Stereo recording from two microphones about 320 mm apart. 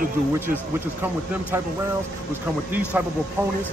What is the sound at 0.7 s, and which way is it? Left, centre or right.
Speech, centre.